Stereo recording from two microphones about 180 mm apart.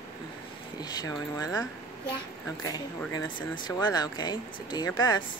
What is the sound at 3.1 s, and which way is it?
Speech, 20° left (ahead or behind).